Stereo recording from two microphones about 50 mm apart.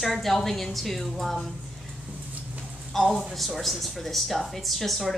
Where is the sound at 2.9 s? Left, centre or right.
Centre.